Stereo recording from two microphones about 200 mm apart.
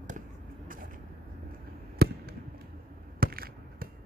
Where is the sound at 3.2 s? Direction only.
45° right (ahead or behind).